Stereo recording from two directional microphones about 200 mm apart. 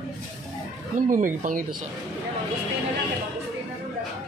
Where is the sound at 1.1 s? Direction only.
40° right (ahead or behind).